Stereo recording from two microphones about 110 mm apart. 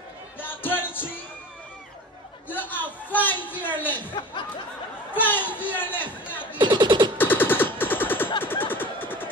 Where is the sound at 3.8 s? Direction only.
15° left (ahead or behind).